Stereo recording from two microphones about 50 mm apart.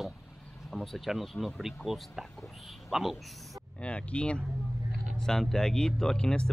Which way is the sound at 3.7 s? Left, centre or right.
Left.